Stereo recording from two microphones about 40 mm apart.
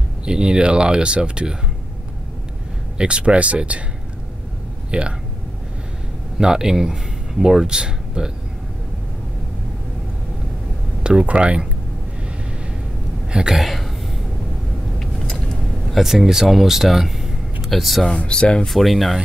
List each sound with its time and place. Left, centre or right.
0.2 s speech: right
3.0 s speech: right
4.9 s speech: right
6.3 s speech: centre
11.0 s a sound: right
11.2 s speech: right
13.3 s speech: right
13.6 s speech: centre
16.0 s speech: centre
17.6 s speech: centre
18.0 s speech: left
18.7 s speech: centre